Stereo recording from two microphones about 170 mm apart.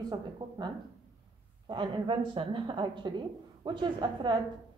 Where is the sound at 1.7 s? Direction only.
30° right (ahead or behind).